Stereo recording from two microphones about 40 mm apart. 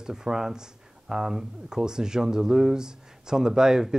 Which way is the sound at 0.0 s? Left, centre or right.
Centre.